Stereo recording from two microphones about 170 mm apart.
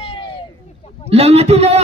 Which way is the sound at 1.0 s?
35° right (ahead or behind).